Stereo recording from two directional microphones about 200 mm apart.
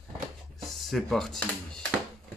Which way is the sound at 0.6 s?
Centre (ahead or behind).